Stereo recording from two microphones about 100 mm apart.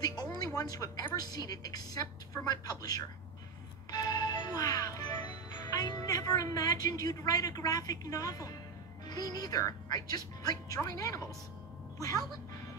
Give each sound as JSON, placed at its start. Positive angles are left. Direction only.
{"t": 0.0, "sound": "music", "side_deg": 40}
{"t": 0.6, "sound": "a woman's voice", "side_deg": 35}
{"t": 3.9, "sound": "music", "side_deg": 45}
{"t": 9.0, "sound": "a woman's voice", "side_deg": 40}